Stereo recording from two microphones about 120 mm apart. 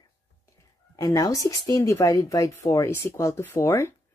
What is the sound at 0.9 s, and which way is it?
Speech, 30° left (ahead or behind).